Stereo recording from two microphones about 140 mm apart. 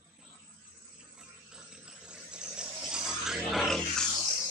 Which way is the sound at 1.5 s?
5° right (ahead or behind).